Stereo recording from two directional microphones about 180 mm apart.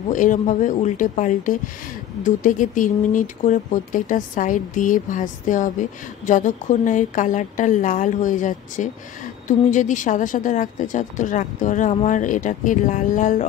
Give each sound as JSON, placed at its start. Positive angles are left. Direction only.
{"t": 0.1, "sound": "speech", "side_deg": 45}